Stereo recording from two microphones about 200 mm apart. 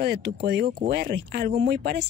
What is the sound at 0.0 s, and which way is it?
A woman's voice, 55° right (ahead or behind).